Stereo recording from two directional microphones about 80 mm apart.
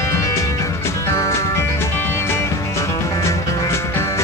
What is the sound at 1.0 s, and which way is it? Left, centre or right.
Music, left.